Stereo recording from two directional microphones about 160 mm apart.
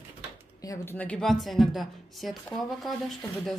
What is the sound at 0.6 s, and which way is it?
Speech, 20° left (ahead or behind).